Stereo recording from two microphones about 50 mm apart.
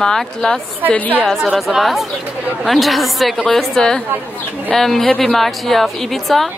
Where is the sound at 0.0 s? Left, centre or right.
Centre.